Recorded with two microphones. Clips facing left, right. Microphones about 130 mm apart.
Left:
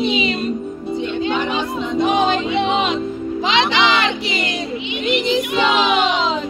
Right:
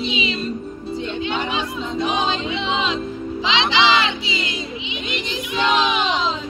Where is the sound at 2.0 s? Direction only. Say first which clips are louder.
Left 6 dB; 55° left (ahead or behind).